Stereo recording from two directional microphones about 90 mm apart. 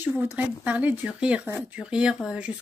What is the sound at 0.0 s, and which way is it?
Speech, 20° right (ahead or behind).